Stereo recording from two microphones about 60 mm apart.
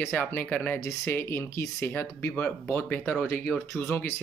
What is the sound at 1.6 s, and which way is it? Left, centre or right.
Speech, left.